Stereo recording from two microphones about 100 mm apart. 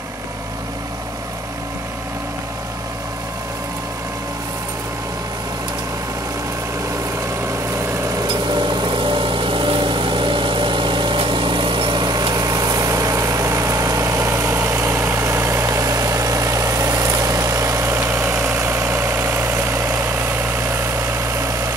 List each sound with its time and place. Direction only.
8.3 s vehicle: 50° right (ahead or behind); by 21.7 s 30° right (ahead or behind)